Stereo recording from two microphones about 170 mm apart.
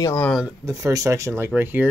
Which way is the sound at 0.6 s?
20° right (ahead or behind).